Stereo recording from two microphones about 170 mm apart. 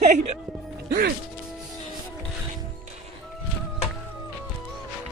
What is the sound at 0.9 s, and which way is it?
Speech, 75° right (ahead or behind).